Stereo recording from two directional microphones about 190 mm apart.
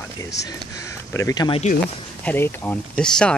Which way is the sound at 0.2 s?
20° left (ahead or behind).